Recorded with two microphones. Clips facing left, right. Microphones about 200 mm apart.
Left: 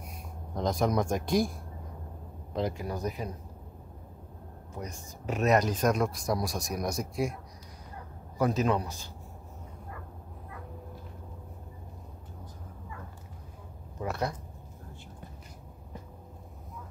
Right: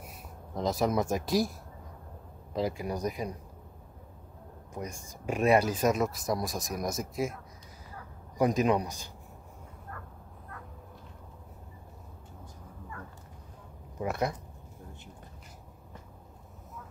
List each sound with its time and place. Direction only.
0.6 s speech: centre (ahead or behind)
2.5 s speech: 5° right (ahead or behind)
4.7 s speech: 15° right (ahead or behind)
8.4 s speech: 15° right (ahead or behind)
13.9 s speech: 15° right (ahead or behind)